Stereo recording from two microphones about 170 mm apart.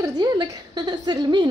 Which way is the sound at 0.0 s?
20° right (ahead or behind).